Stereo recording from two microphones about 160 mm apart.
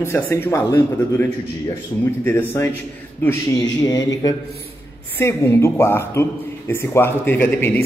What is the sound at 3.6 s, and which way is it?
A man's voice, 25° left (ahead or behind).